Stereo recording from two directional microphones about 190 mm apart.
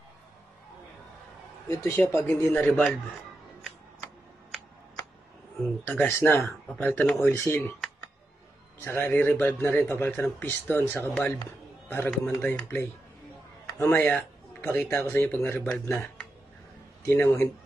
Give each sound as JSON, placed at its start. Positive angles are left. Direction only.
{"t": 1.7, "sound": "a man's voice", "side_deg": 15}
{"t": 5.9, "sound": "a man's voice", "side_deg": 10}
{"t": 8.8, "sound": "a man's voice", "side_deg": 10}